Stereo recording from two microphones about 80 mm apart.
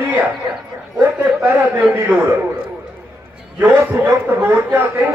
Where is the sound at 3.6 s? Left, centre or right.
Right.